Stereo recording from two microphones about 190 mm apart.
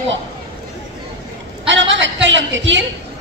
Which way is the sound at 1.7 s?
75° right (ahead or behind).